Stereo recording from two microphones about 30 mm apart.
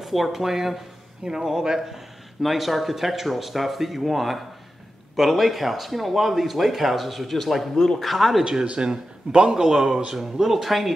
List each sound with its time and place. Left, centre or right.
0.0 s a man's voice: centre
2.4 s speech: centre
8.7 s a man's voice: right
10.1 s speech: centre